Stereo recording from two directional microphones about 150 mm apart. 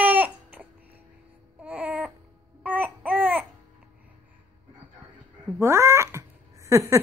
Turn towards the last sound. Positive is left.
turn(degrees=-20)  # may be behind; listen again after turning